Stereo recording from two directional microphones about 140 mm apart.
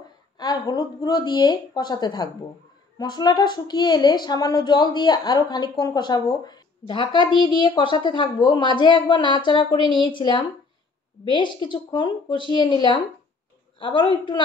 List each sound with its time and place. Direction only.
0.4 s a woman's voice: 30° left (ahead or behind)